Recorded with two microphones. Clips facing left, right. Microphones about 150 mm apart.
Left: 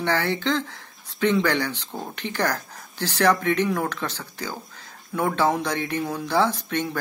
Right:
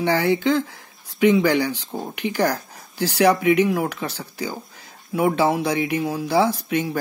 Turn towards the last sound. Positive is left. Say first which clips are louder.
# right 3 dB
turn(degrees=-10)  # may be behind; listen again after turning